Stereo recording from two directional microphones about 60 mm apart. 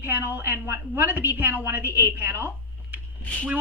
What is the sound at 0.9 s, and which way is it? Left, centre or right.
A woman's voice, right.